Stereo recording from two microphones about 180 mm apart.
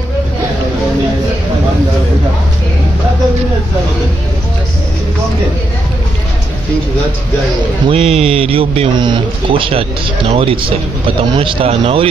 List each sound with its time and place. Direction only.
7.9 s speech: 30° right (ahead or behind)